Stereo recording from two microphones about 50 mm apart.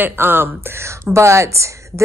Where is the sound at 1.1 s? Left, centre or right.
Right.